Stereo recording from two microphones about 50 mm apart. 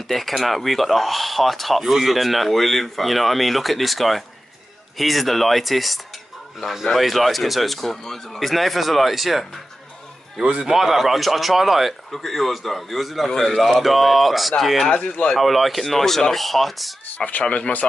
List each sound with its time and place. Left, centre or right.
0.4 s speech: centre
10.4 s a man's voice: right
10.7 s speech: centre
13.3 s a man's voice: centre
13.6 s speech: centre
14.9 s speech: left
15.3 s speech: centre
17.2 s speech: left